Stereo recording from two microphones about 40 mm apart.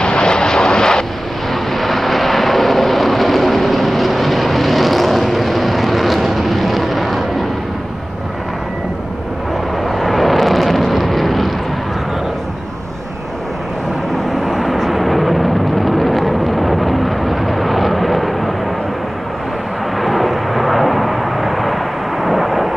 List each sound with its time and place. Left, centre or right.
0.0 s vehicle: left
1.5 s vehicle: centre
9.8 s vehicle: centre
14.4 s vehicle: centre
20.0 s vehicle: centre
22.2 s thunder: centre